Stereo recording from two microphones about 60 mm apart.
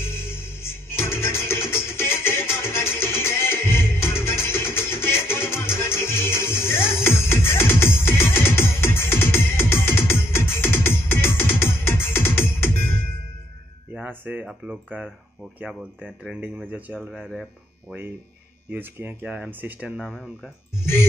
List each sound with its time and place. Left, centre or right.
0.0 s music: left
13.9 s a sound: right
14.4 s speech: right
17.8 s speech: right
20.8 s music: left